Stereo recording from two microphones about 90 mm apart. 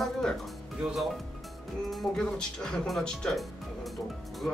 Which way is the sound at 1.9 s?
5° left (ahead or behind).